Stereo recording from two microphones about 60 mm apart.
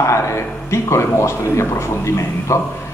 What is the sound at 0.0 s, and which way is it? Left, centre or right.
Speech, left.